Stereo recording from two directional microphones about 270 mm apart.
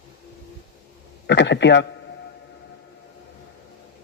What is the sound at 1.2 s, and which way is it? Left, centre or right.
Speech, left.